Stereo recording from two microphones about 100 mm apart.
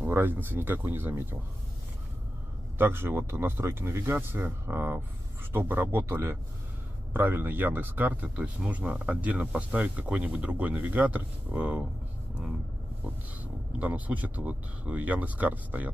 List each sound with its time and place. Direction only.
0.0 s speech: 20° right (ahead or behind)
2.8 s speech: 25° right (ahead or behind)
13.4 s speech: 15° right (ahead or behind)